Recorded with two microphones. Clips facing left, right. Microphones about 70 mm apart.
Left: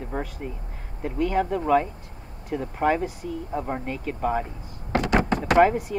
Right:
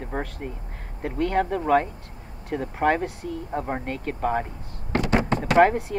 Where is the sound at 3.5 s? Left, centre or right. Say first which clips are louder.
Right 1 dB; centre.